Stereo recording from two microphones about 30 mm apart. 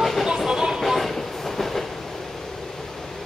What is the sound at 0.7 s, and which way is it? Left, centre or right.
Train, centre.